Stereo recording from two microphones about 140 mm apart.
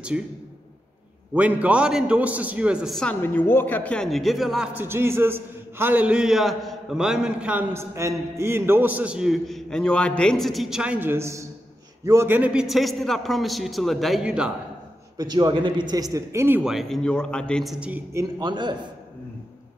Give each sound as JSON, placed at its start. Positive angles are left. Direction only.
{"t": 0.1, "sound": "a man's voice", "side_deg": -5}
{"t": 1.3, "sound": "a man's voice", "side_deg": -10}
{"t": 3.0, "sound": "a woman's voice", "side_deg": 10}
{"t": 4.7, "sound": "a man's voice", "side_deg": -15}
{"t": 15.1, "sound": "speech", "side_deg": -30}
{"t": 16.6, "sound": "a man's voice", "side_deg": 0}
{"t": 17.7, "sound": "a man's voice", "side_deg": -10}
{"t": 18.1, "sound": "speech", "side_deg": -30}